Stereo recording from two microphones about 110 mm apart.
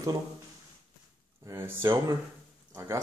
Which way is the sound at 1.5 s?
25° right (ahead or behind).